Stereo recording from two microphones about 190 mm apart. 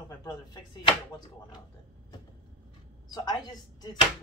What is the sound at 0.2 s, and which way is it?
Speech, 20° left (ahead or behind).